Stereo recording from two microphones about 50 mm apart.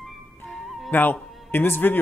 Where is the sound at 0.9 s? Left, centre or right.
Left.